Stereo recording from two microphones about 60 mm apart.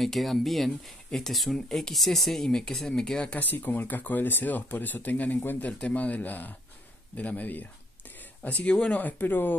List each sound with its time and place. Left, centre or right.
0.0 s speech: centre
3.3 s speech: left
5.7 s speech: left